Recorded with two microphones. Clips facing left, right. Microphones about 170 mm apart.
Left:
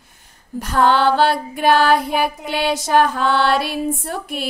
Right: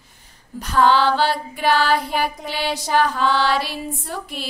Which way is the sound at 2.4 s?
55° left (ahead or behind).